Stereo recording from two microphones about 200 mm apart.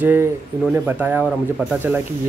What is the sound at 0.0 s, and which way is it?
Speech, 10° right (ahead or behind).